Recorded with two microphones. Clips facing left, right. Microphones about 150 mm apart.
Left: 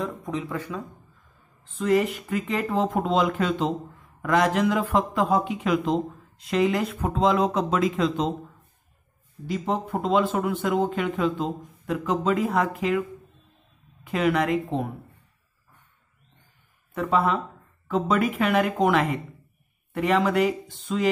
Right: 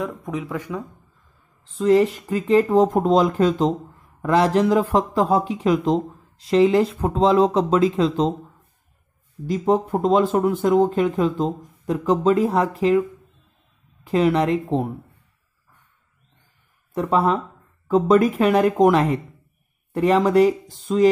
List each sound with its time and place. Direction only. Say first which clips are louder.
0.0 s speech: right 2 dB; 10° right (ahead or behind)
1.8 s speech: right 6 dB; 30° right (ahead or behind)
9.5 s speech: right 7 dB; 40° right (ahead or behind)
14.0 s speech: right 5 dB; 30° right (ahead or behind)
16.9 s speech: right 4 dB; 35° right (ahead or behind)